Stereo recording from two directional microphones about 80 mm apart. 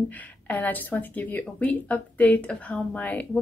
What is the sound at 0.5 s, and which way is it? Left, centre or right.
A woman's voice, left.